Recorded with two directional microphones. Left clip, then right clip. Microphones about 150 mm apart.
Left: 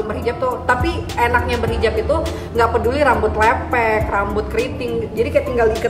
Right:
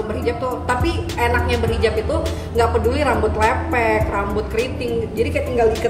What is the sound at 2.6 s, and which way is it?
A woman's voice, 30° left (ahead or behind).